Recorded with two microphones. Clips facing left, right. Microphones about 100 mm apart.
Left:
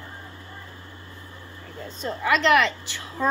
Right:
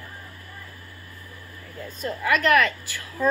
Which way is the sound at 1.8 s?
25° left (ahead or behind).